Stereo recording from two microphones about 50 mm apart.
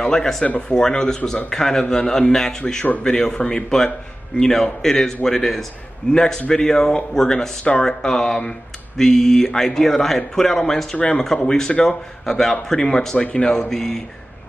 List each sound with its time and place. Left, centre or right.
0.0 s speech: centre
0.5 s speech: left; by 14.0 s centre